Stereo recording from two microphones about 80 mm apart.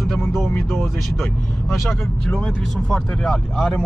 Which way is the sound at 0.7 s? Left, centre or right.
Centre.